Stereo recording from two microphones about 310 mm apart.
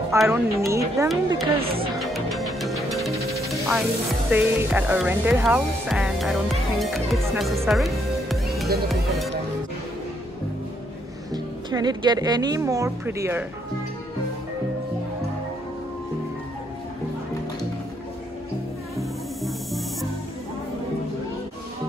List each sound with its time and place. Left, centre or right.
0.1 s a woman's voice: centre
1.6 s a woman's voice: centre
2.0 s music: centre
4.3 s speech: centre
11.3 s a woman's voice: centre
18.9 s music: centre